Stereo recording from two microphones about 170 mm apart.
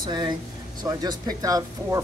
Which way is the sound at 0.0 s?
25° right (ahead or behind).